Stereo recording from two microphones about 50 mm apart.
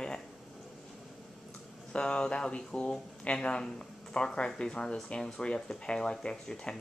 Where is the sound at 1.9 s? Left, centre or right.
Left.